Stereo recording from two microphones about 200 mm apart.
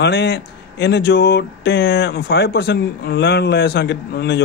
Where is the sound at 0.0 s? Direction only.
55° left (ahead or behind).